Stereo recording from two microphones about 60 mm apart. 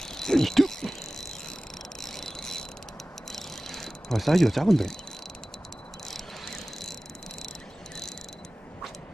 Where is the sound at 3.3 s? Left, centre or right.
Centre.